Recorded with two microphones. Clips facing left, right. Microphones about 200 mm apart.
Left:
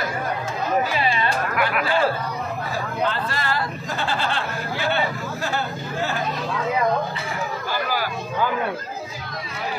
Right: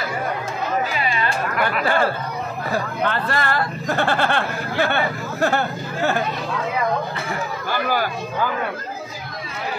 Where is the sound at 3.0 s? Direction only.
60° right (ahead or behind).